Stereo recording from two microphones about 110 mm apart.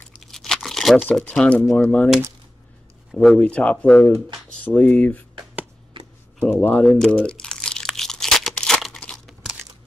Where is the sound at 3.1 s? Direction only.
Centre (ahead or behind).